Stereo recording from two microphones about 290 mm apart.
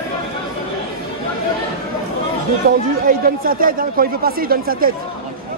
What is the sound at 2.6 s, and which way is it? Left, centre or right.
Speech, right.